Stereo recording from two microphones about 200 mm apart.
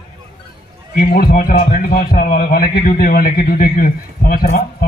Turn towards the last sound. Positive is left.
turn(degrees=45)  # may be behind; listen again after turning